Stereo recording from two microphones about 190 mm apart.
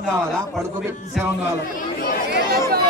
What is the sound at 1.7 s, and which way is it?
Chatter, 45° left (ahead or behind).